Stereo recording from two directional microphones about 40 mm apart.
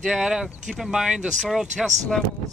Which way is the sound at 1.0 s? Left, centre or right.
Centre.